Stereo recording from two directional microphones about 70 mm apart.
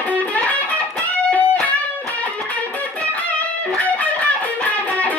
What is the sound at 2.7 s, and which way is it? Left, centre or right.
Music, left.